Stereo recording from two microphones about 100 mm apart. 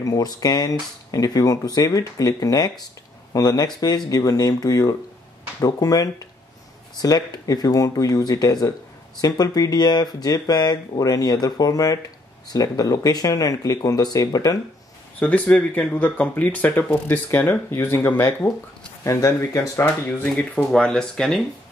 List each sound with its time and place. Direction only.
0.0 s speech: 40° left (ahead or behind)
15.1 s speech: 15° left (ahead or behind)
19.7 s speech: 20° left (ahead or behind)